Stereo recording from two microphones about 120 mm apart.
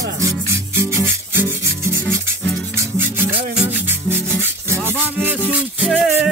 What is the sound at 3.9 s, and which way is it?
Rub, 20° right (ahead or behind).